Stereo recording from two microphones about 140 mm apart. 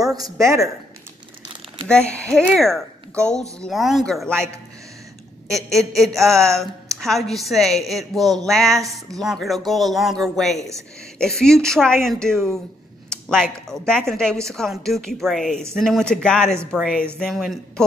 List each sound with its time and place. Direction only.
0.1 s a woman's voice: 25° right (ahead or behind)
1.9 s speech: 10° left (ahead or behind)
5.5 s speech: centre (ahead or behind)